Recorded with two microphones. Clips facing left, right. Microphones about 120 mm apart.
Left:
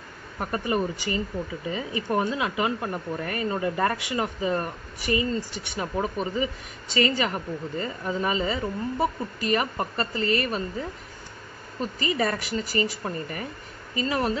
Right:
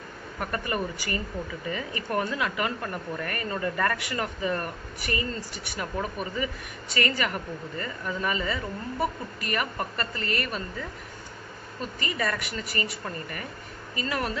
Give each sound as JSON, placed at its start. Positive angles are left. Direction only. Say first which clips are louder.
{"t": 0.4, "sound": "speech", "louder": "left 4 dB", "side_deg": 20}
{"t": 12.0, "sound": "speech", "louder": "left 4 dB", "side_deg": 30}